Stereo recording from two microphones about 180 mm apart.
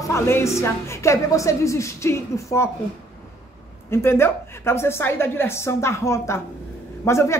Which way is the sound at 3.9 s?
15° left (ahead or behind).